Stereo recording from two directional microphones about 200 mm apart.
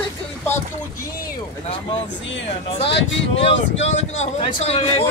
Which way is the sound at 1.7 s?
25° left (ahead or behind).